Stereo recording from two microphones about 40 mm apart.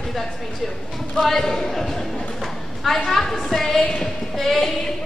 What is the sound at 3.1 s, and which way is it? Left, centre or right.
Speech, centre.